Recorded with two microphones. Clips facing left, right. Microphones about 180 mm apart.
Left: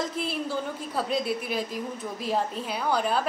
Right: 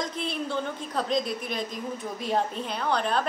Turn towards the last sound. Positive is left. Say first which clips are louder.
# left 1 dB
turn(degrees=5)  # may be behind; listen again after turning